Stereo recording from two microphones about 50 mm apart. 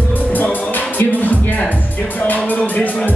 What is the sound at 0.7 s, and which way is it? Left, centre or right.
Music, left.